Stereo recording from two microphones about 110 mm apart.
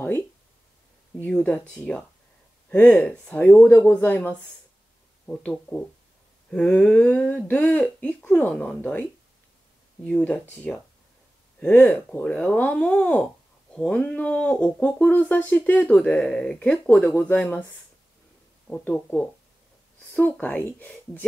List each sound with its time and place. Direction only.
1.2 s speech: 10° left (ahead or behind)
10.0 s speech: 10° left (ahead or behind)
18.7 s speech: 10° left (ahead or behind)